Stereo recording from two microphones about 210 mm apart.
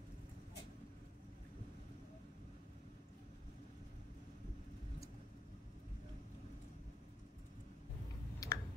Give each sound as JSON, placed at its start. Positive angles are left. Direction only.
{"t": 8.4, "sound": "clicking", "side_deg": 15}